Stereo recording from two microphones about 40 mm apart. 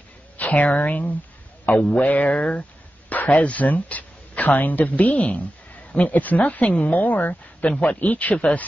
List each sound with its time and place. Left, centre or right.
0.4 s a woman's voice: left
6.8 s speech: left
7.7 s speech: left